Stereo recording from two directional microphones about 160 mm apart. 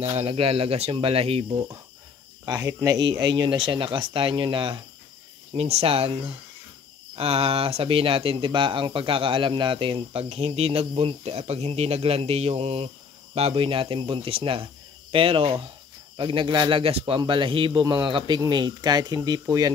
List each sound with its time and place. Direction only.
0.0 s speech: 40° right (ahead or behind)
2.4 s a man's voice: 25° right (ahead or behind)